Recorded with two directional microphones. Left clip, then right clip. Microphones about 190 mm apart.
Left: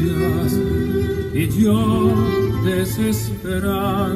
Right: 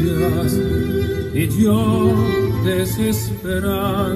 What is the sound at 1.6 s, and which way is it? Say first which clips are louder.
Music: right 1 dB; 30° left (ahead or behind).